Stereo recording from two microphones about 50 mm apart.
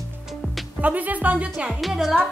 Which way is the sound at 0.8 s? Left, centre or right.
Right.